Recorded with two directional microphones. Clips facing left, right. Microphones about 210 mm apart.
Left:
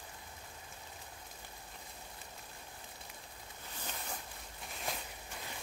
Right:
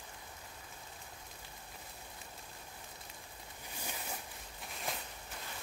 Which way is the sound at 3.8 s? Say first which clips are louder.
Right 1 dB; 10° right (ahead or behind).